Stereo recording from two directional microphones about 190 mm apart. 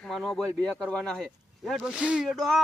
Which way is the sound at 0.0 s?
Centre (ahead or behind).